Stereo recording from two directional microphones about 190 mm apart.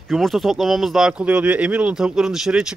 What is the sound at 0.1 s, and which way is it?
Speech, centre (ahead or behind).